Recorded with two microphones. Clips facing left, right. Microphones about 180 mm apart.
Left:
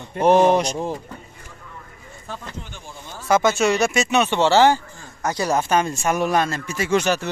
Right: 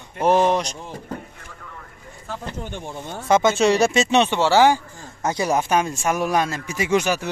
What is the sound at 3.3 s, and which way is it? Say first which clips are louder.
Speech: right 1 dB; 25° right (ahead or behind).